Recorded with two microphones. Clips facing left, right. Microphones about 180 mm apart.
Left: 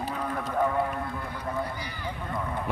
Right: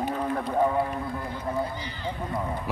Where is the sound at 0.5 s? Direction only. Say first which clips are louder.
Right 2 dB; 25° right (ahead or behind).